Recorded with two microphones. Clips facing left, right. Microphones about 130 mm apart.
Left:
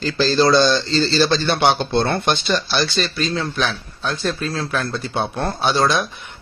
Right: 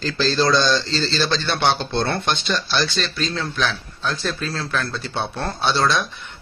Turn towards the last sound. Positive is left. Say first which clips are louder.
# left 2 dB
turn(degrees=10)  # may be behind; listen again after turning